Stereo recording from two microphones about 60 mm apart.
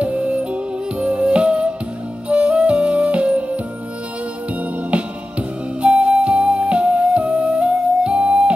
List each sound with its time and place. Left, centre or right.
0.0 s music: right
5.8 s music: right